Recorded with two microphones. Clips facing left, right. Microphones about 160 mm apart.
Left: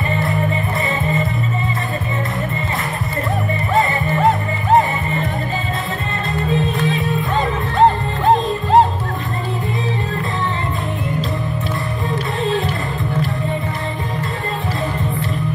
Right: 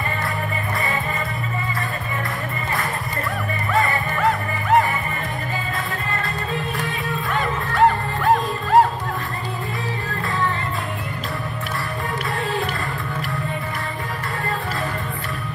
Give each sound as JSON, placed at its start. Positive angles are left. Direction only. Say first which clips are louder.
{"t": 3.7, "sound": "music", "louder": "left 4 dB", "side_deg": 25}
{"t": 6.5, "sound": "music", "louder": "left 10 dB", "side_deg": 20}